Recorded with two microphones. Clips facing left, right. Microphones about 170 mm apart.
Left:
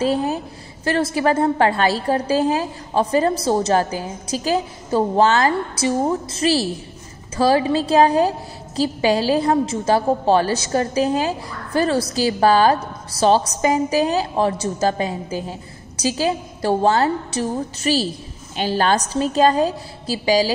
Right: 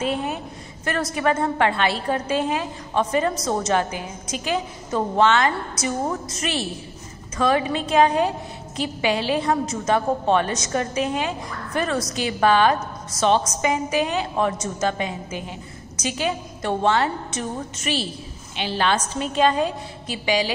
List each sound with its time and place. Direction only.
0.0 s a woman's voice: 35° left (ahead or behind)